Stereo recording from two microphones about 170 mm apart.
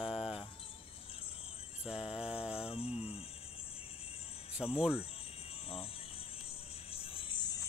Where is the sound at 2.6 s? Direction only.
35° left (ahead or behind).